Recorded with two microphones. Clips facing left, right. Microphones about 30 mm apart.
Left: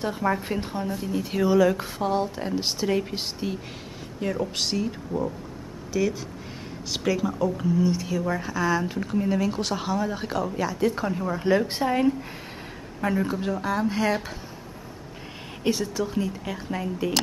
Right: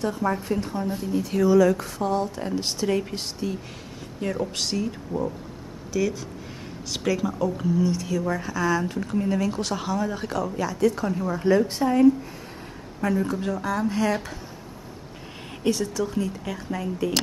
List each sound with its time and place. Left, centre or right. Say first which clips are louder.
0.2 s speech: even; left
3.4 s speech: right 2 dB; left
4.2 s a woman's voice: even; centre
15.8 s a woman's voice: right 1 dB; centre